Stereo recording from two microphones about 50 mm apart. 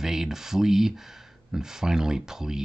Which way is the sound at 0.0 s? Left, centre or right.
Centre.